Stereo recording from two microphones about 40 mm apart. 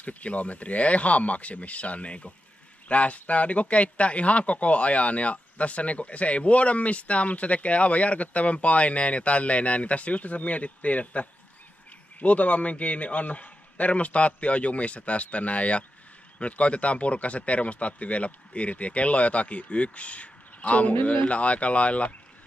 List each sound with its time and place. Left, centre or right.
0.0 s a man's voice: left